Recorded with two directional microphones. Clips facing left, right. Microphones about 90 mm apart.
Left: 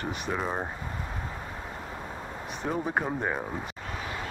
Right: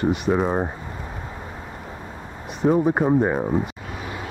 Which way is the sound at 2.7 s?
25° right (ahead or behind).